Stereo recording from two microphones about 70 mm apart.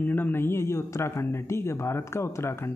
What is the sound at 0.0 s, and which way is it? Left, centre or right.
Speech, left.